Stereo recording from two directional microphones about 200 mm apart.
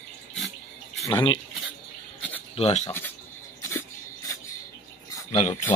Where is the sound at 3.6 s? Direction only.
15° left (ahead or behind).